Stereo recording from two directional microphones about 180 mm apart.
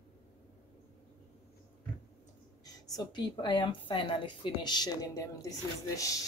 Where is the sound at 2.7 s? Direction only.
20° left (ahead or behind).